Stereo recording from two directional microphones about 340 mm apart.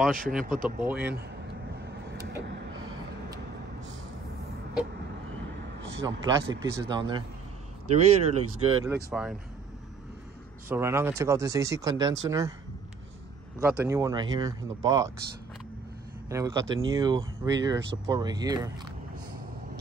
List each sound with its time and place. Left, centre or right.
0.1 s speech: right
0.8 s speech: centre
2.1 s vehicle: right
6.0 s speech: centre
10.7 s speech: centre
13.6 s speech: centre
16.3 s speech: centre